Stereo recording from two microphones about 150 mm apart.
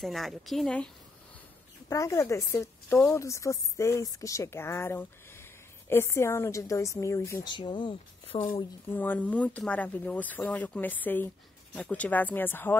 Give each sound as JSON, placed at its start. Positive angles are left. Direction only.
{"t": 0.0, "sound": "speech", "side_deg": 0}
{"t": 1.9, "sound": "a woman's voice", "side_deg": 20}
{"t": 7.4, "sound": "speech", "side_deg": 30}
{"t": 8.9, "sound": "speech", "side_deg": 10}